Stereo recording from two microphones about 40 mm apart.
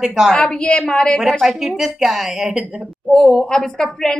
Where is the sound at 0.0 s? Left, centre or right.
Centre.